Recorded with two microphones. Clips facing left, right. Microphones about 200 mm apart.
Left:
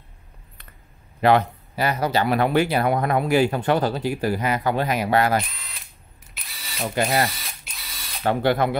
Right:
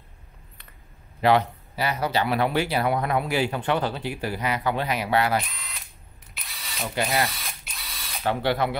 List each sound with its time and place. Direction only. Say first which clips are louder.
1.2 s speech: left 2 dB; 50° left (ahead or behind)
6.3 s drill: even; centre (ahead or behind)
7.2 s ratchet: left 2 dB; centre (ahead or behind)
8.2 s speech: left 4 dB; 50° left (ahead or behind)